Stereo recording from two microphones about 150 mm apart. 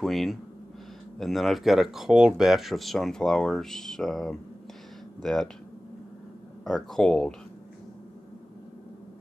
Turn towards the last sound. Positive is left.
turn(degrees=5)  # may be behind; listen again after turning